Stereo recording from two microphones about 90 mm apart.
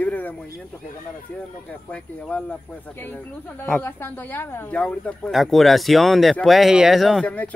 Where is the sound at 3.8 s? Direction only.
25° left (ahead or behind).